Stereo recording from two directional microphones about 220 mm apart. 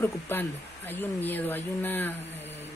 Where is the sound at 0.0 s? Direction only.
10° left (ahead or behind).